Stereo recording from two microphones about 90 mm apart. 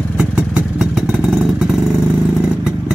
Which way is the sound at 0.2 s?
10° right (ahead or behind).